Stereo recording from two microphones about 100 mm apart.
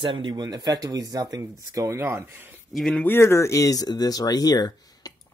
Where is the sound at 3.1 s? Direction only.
25° left (ahead or behind).